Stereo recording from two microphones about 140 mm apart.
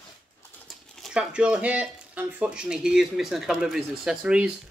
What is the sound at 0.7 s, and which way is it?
Speech, 5° right (ahead or behind).